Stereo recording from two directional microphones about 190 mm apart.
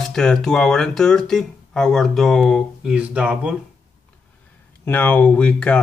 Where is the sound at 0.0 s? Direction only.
Centre (ahead or behind).